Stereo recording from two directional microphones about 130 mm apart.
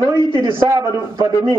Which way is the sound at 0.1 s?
30° right (ahead or behind).